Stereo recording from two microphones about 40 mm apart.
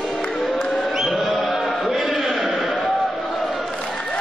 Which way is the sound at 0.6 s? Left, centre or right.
Left.